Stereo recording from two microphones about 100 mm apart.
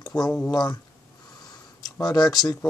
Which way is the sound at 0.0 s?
40° left (ahead or behind).